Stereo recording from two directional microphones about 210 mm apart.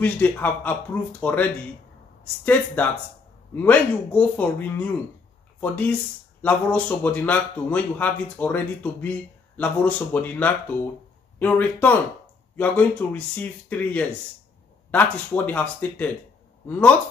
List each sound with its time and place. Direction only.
0.0 s a man's voice: 10° left (ahead or behind)